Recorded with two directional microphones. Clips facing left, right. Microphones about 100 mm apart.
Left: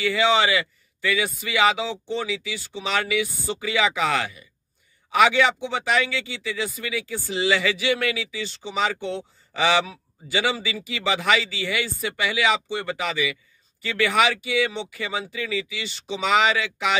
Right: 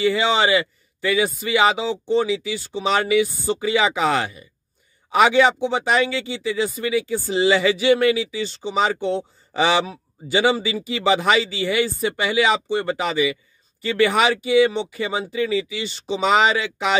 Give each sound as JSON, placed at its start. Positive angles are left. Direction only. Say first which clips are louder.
{"t": 0.0, "sound": "speech", "louder": "right 2 dB", "side_deg": -30}